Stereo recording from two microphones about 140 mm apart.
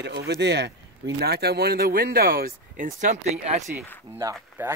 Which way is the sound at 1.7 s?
90° right.